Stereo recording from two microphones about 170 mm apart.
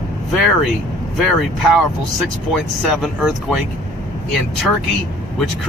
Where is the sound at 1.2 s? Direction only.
Centre (ahead or behind).